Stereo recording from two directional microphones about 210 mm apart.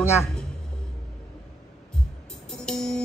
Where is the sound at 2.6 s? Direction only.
5° left (ahead or behind).